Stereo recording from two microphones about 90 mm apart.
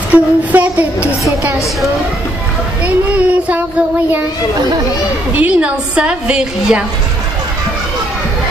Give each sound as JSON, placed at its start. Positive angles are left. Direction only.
{"t": 0.1, "sound": "a woman's voice", "side_deg": -15}
{"t": 2.8, "sound": "a woman's voice", "side_deg": -15}
{"t": 5.3, "sound": "a woman's voice", "side_deg": -15}